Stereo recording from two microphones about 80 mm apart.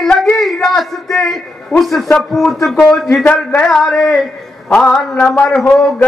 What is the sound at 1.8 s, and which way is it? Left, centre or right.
A man's voice, centre.